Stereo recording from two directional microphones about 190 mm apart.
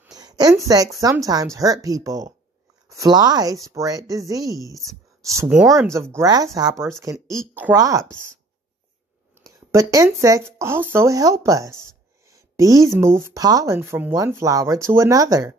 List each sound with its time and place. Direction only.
0.0 s a sound: 20° right (ahead or behind)
1.0 s speech: 20° right (ahead or behind)
5.5 s speech: 5° right (ahead or behind)
5.8 s speech: 15° right (ahead or behind)
9.4 s speech: 15° right (ahead or behind)